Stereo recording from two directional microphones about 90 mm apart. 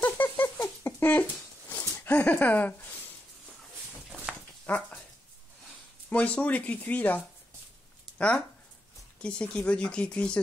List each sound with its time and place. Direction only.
0.0 s a sound: 20° left (ahead or behind)
4.6 s dog: 15° left (ahead or behind)
6.0 s speech: 15° left (ahead or behind)
9.2 s speech: 15° left (ahead or behind)